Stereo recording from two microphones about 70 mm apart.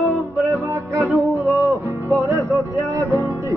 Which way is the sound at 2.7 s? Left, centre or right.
Right.